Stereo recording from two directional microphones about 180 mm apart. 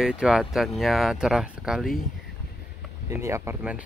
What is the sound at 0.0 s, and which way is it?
Speech, 5° right (ahead or behind).